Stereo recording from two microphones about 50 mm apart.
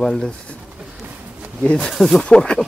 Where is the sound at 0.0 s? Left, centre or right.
Centre.